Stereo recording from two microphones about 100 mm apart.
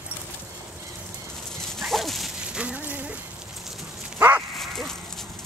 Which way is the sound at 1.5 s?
5° left (ahead or behind).